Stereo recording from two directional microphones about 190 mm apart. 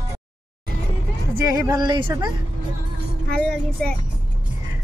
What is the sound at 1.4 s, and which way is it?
Speech, 20° right (ahead or behind).